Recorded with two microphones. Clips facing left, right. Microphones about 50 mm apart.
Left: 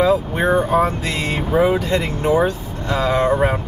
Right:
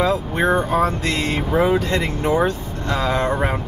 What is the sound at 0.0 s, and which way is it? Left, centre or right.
Speech, centre.